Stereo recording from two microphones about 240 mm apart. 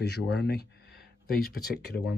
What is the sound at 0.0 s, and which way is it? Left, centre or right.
Speech, left.